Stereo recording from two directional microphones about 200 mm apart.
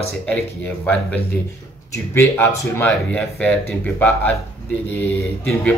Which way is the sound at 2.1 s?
10° left (ahead or behind).